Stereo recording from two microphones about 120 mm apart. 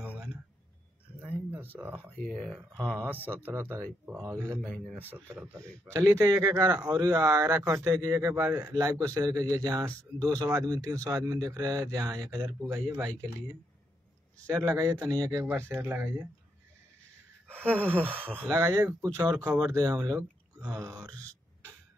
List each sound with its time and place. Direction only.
0.0 s a sound: 15° right (ahead or behind)
2.1 s speech: 5° left (ahead or behind)
2.9 s speech: 15° right (ahead or behind)
4.6 s speech: 5° left (ahead or behind)
4.9 s speech: 15° right (ahead or behind)
14.4 s speech: 25° right (ahead or behind)
15.4 s speech: 15° right (ahead or behind)
17.6 s speech: 15° right (ahead or behind)
19.7 s speech: 25° right (ahead or behind)